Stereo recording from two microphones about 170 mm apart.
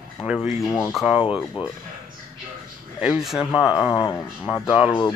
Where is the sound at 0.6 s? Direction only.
15° left (ahead or behind).